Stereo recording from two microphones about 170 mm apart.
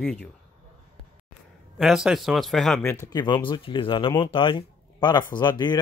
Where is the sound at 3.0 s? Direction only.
25° left (ahead or behind).